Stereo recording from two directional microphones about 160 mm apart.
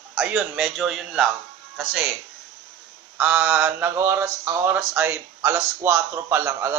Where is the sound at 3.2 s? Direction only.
10° right (ahead or behind).